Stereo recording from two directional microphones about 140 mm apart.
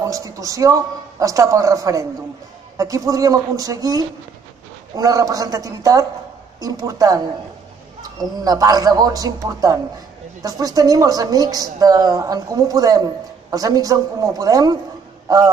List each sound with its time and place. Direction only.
0.0 s a woman's voice: 25° right (ahead or behind)